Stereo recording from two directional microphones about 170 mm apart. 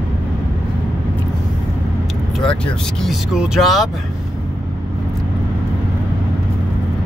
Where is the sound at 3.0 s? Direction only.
Centre (ahead or behind).